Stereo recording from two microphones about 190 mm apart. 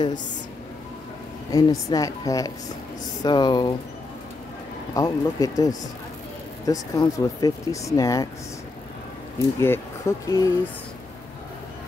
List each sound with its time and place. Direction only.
1.5 s a woman's voice: 20° left (ahead or behind)
4.9 s a woman's voice: 20° left (ahead or behind)
9.6 s speech: 15° left (ahead or behind)